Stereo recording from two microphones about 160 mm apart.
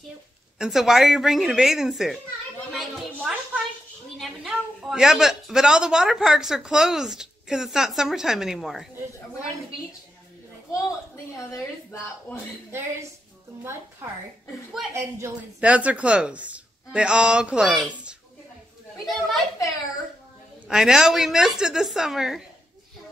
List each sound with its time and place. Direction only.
0.6 s a woman's voice: centre (ahead or behind)
2.7 s a sound: centre (ahead or behind)
4.2 s a woman's voice: centre (ahead or behind)
11.3 s speech: 20° left (ahead or behind)
15.0 s a woman's voice: 15° right (ahead or behind); by 19.4 s centre (ahead or behind)
20.6 s a woman's voice: 5° right (ahead or behind)